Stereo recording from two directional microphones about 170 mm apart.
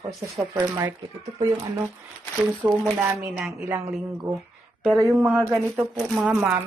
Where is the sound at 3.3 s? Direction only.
5° right (ahead or behind).